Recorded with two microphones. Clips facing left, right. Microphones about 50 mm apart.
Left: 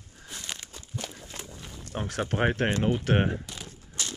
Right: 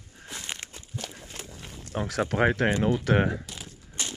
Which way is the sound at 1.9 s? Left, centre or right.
Right.